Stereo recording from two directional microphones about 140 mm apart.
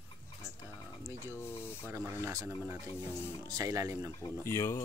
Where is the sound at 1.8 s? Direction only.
10° right (ahead or behind).